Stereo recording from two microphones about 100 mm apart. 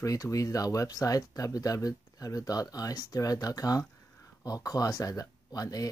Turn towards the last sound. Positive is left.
turn(degrees=40)  # may be behind; listen again after turning